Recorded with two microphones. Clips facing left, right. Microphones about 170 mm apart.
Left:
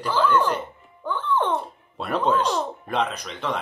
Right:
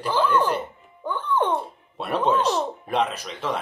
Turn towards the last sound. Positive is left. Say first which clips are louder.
# even
turn(degrees=0)  # may be behind; listen again after turning